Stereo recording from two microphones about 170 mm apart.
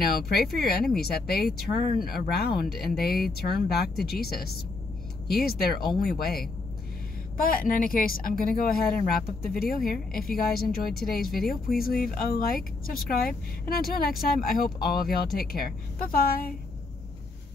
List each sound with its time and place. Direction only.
0.0 s speech: 65° left (ahead or behind)